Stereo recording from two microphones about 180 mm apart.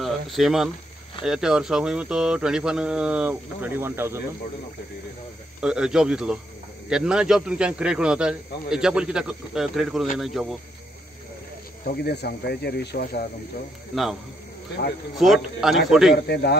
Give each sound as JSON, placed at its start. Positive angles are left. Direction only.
{"t": 0.0, "sound": "a sound", "side_deg": 0}
{"t": 1.2, "sound": "speech", "side_deg": -5}
{"t": 5.6, "sound": "speech", "side_deg": -5}
{"t": 11.8, "sound": "speech", "side_deg": 65}
{"t": 15.1, "sound": "speech", "side_deg": 0}